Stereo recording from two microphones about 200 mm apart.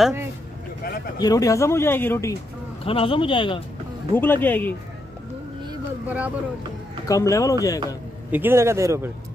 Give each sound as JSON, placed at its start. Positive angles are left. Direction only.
{"t": 0.8, "sound": "speech", "side_deg": 50}
{"t": 1.2, "sound": "speech", "side_deg": 15}
{"t": 2.8, "sound": "speech", "side_deg": 25}
{"t": 4.1, "sound": "speech", "side_deg": 10}
{"t": 6.0, "sound": "a man's voice", "side_deg": -5}
{"t": 7.1, "sound": "speech", "side_deg": 15}
{"t": 8.3, "sound": "a man's voice", "side_deg": -10}